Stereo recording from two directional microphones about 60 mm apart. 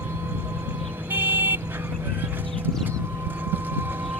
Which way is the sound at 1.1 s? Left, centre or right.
Right.